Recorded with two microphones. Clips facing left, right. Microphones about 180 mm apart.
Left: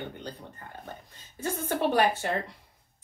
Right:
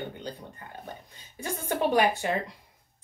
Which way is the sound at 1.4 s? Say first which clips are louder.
Even; 15° right (ahead or behind).